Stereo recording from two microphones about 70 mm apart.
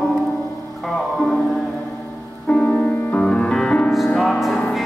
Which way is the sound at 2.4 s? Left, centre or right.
Centre.